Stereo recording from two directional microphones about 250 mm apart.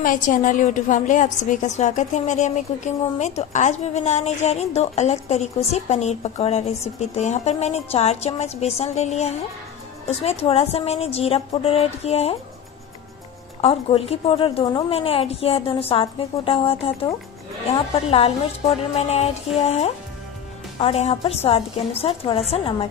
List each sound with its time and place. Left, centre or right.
0.0 s a woman's voice: left
13.6 s a woman's voice: left